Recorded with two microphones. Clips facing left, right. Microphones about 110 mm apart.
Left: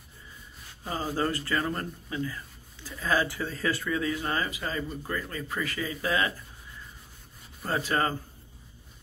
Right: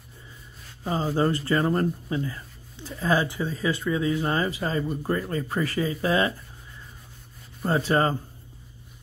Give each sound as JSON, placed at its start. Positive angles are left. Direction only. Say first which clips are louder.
{"t": 0.8, "sound": "speech", "louder": "right 5 dB", "side_deg": -25}
{"t": 7.6, "sound": "speech", "louder": "right 5 dB", "side_deg": -30}